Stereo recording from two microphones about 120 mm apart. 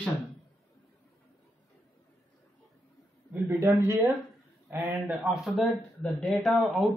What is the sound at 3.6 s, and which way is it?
Speech, 25° right (ahead or behind).